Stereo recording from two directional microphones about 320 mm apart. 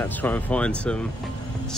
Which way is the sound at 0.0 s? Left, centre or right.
Centre.